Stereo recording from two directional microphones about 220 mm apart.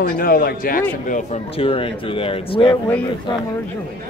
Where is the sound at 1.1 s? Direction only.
30° left (ahead or behind).